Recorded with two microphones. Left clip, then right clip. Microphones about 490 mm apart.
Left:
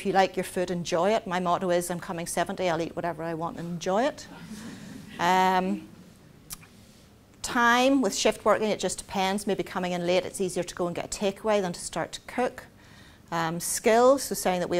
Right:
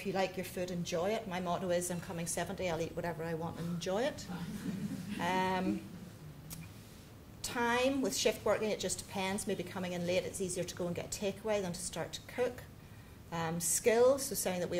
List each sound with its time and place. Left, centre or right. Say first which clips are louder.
0.0 s a woman's voice: left 12 dB; left
7.4 s a woman's voice: left 10 dB; left